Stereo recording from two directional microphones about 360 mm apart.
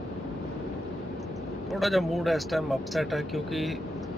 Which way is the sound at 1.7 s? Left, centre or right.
Centre.